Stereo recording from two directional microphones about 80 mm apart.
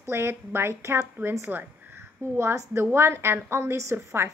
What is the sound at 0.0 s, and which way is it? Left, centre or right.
A woman's voice, right.